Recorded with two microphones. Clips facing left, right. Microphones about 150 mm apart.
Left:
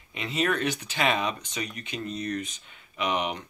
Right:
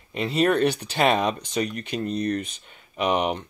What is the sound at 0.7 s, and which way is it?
Speech, 60° right (ahead or behind).